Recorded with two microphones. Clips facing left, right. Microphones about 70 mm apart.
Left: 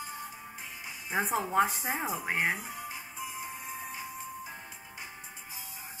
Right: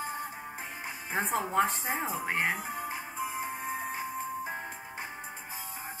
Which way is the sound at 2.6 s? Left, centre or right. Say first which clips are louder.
Right 5 dB; right.